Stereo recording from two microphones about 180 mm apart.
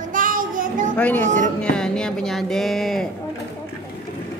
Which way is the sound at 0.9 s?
10° left (ahead or behind).